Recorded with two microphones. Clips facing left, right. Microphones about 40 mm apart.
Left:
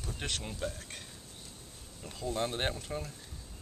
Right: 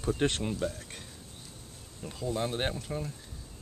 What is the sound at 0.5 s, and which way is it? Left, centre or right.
Speech, centre.